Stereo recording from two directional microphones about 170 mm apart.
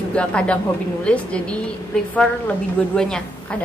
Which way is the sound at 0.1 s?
5° left (ahead or behind).